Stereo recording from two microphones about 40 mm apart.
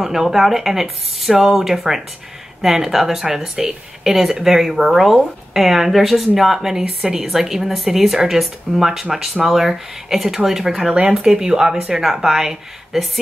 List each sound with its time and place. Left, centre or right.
0.0 s speech: centre